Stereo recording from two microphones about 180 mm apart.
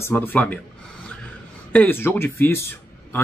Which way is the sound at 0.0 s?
10° left (ahead or behind).